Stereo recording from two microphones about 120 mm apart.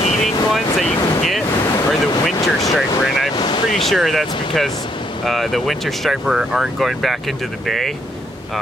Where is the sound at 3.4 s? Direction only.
40° left (ahead or behind).